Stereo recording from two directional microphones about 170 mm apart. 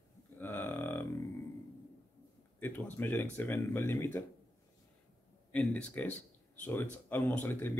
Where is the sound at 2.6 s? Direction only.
10° left (ahead or behind).